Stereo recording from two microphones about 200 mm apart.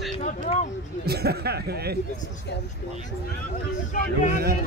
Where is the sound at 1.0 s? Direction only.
55° right (ahead or behind).